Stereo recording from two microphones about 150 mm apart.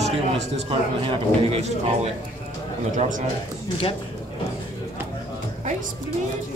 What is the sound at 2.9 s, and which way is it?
Speech, 60° right (ahead or behind).